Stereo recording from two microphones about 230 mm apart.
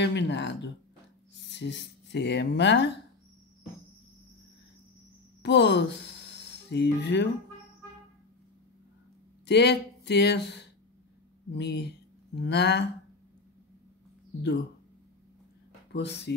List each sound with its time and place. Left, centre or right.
0.0 s speech: left
5.4 s speech: left
9.5 s speech: left
15.9 s speech: left